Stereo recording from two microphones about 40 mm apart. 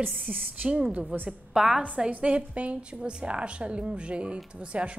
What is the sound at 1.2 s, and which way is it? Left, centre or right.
Speech, centre.